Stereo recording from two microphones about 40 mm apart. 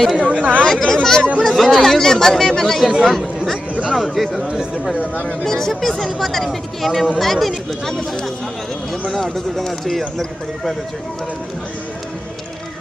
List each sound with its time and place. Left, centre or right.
0.2 s speech: right
0.7 s speech: centre
1.5 s speech: centre
5.4 s speech: centre
9.0 s speech: centre